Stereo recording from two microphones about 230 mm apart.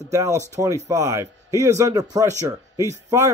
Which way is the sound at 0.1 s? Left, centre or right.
Centre.